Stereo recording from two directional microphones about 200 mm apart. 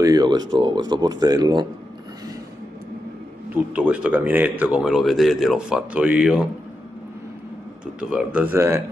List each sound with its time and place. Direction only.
0.0 s speech: 20° right (ahead or behind)
3.7 s speech: 5° right (ahead or behind)
7.8 s speech: 5° right (ahead or behind)